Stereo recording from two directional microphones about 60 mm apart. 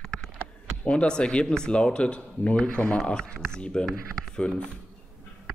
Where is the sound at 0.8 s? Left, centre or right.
Centre.